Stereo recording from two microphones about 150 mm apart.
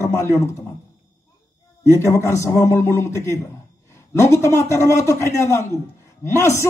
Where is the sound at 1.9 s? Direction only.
20° left (ahead or behind).